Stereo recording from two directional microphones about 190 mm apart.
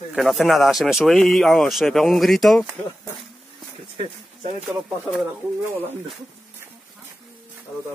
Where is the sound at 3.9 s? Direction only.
35° right (ahead or behind).